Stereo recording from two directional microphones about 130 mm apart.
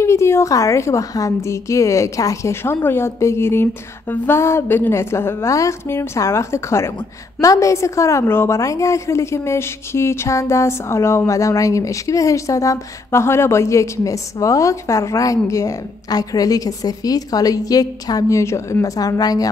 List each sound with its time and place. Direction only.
0.0 s a woman's voice: 20° left (ahead or behind)